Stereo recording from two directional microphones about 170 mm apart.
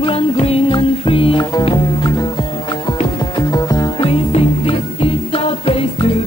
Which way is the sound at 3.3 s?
25° left (ahead or behind).